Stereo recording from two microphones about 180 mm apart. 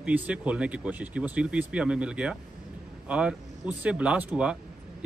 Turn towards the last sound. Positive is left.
turn(degrees=-10)  # may be behind; listen again after turning